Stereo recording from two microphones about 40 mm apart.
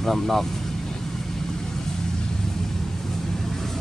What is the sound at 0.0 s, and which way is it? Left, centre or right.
Speech, centre.